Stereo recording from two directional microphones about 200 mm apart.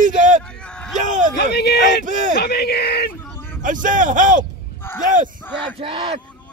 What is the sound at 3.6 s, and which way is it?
Speech, 40° right (ahead or behind).